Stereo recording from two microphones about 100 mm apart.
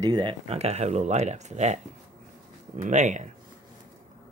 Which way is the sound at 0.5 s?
90° right.